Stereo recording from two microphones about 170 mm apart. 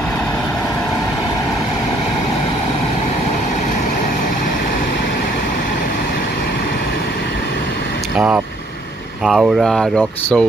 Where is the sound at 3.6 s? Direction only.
45° left (ahead or behind).